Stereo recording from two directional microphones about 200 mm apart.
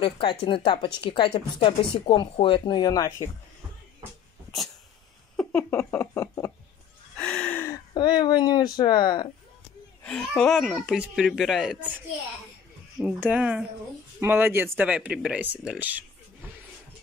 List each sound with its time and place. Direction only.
0.0 s speech: 25° left (ahead or behind)
5.3 s a sound: 5° left (ahead or behind)
7.2 s speech: 5° left (ahead or behind); by 9.3 s 20° left (ahead or behind)
10.0 s speech: 5° left (ahead or behind)
13.0 s speech: 5° right (ahead or behind)